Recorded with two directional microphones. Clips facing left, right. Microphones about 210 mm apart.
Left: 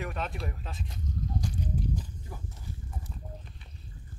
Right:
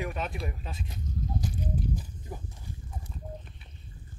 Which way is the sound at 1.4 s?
5° right (ahead or behind).